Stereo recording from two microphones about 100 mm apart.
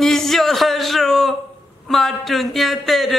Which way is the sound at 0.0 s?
5° left (ahead or behind).